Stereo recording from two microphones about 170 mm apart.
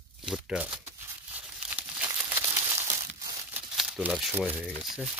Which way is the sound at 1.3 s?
10° right (ahead or behind).